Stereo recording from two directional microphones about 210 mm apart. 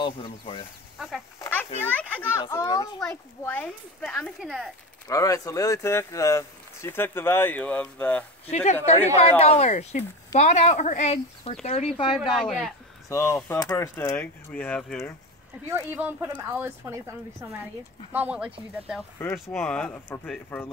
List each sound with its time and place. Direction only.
0.0 s speech: 25° left (ahead or behind)
0.9 s speech: centre (ahead or behind)
1.4 s a sound: 10° left (ahead or behind)
1.9 s speech: 10° left (ahead or behind)
3.0 s speech: 5° left (ahead or behind)
5.0 s speech: 15° left (ahead or behind)
8.5 s speech: 30° left (ahead or behind)
12.4 s speech: centre (ahead or behind)
13.1 s speech: 15° left (ahead or behind)
15.7 s a woman's voice: 10° right (ahead or behind); by 20.7 s 10° left (ahead or behind)